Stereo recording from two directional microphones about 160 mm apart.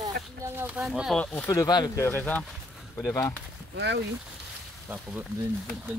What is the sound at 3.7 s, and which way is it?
Speech, 90° right.